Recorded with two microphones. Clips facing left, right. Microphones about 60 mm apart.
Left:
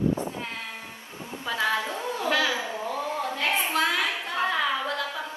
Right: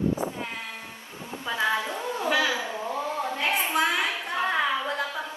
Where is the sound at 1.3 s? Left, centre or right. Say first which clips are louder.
Even; right.